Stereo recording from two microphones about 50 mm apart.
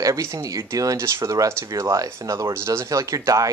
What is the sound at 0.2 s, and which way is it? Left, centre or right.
Speech, right.